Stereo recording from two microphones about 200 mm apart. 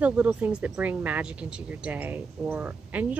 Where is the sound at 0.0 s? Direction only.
5° right (ahead or behind).